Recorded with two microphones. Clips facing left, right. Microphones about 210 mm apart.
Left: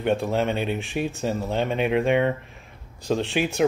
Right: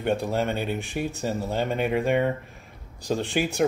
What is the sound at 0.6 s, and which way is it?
Speech, 60° left (ahead or behind).